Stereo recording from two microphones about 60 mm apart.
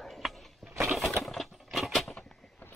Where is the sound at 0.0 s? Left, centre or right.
Centre.